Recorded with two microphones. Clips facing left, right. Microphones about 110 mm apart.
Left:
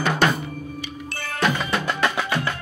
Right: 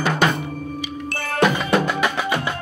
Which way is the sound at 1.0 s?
60° right (ahead or behind).